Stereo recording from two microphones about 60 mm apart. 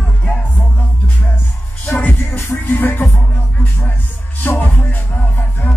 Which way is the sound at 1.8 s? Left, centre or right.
Left.